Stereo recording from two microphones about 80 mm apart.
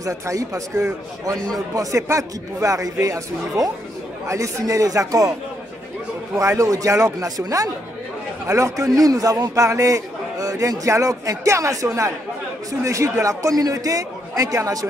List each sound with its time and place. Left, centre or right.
0.0 s a man's voice: right
6.3 s a man's voice: right
8.5 s a man's voice: right